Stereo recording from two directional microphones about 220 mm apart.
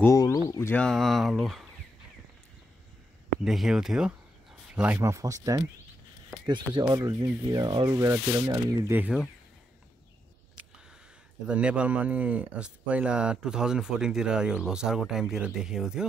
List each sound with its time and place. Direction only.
0.0 s speech: 15° left (ahead or behind); by 1.7 s centre (ahead or behind)
3.4 s speech: centre (ahead or behind)
11.4 s speech: 5° right (ahead or behind)